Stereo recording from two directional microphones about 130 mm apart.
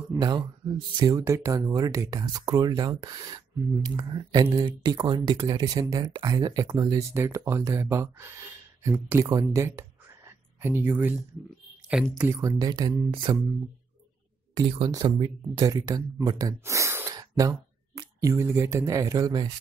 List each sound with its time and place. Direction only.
0.2 s speech: 35° right (ahead or behind)
13.1 s speech: 40° right (ahead or behind)
14.9 s speech: 30° right (ahead or behind)